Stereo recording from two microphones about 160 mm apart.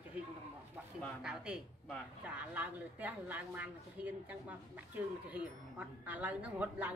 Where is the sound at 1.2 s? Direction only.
5° right (ahead or behind).